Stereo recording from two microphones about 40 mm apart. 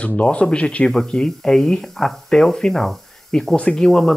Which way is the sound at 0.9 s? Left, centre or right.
Centre.